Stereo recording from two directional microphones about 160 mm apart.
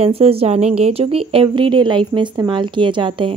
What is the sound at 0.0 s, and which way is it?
A woman's voice, 40° right (ahead or behind).